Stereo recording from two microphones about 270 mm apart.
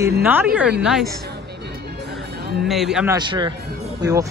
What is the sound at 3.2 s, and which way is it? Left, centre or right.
Speech, centre.